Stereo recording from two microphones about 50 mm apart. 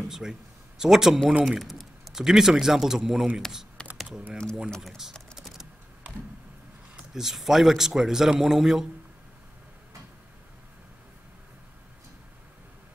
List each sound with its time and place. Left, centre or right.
0.1 s speech: centre
1.4 s typing: centre
2.2 s a man's voice: centre
3.8 s computer keyboard: left
4.8 s a man's voice: centre
5.4 s typing: centre
7.2 s a man's voice: centre